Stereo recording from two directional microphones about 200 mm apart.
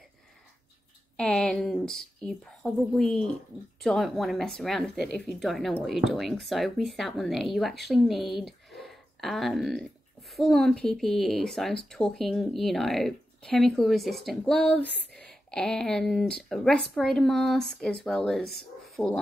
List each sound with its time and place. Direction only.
1.1 s a woman's voice: 5° left (ahead or behind)